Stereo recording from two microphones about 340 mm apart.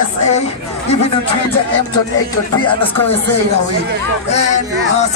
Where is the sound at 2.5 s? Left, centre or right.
Centre.